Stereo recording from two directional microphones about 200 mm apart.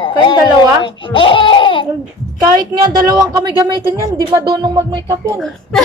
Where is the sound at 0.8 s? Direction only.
25° left (ahead or behind).